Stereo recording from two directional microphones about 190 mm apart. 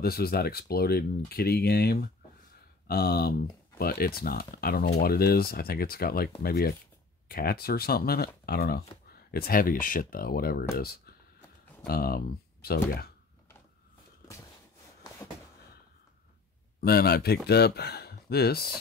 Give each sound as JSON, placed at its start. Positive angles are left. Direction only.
{"t": 0.0, "sound": "speech", "side_deg": 55}
{"t": 16.8, "sound": "speech", "side_deg": 55}